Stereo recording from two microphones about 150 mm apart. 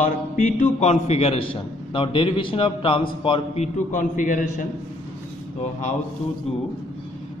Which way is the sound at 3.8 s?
60° left (ahead or behind).